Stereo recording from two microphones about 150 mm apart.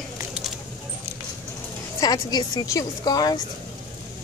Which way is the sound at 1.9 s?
25° left (ahead or behind).